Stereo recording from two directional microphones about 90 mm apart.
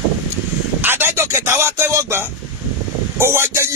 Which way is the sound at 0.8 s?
25° right (ahead or behind).